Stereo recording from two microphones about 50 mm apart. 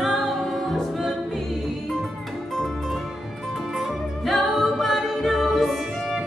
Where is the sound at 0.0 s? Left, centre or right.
Centre.